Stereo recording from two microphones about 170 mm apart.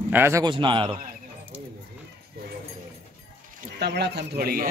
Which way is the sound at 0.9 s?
55° right (ahead or behind).